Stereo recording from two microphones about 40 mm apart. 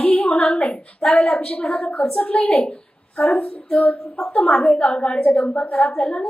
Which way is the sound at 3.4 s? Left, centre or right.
Left.